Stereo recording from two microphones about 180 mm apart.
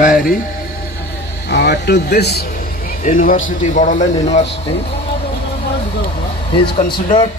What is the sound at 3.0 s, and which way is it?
Speech, 50° left (ahead or behind).